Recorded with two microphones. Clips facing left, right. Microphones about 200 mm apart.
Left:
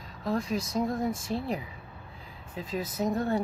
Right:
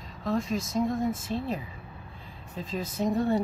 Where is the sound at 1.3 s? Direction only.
10° left (ahead or behind).